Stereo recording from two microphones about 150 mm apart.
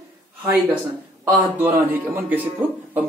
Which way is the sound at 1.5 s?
10° right (ahead or behind).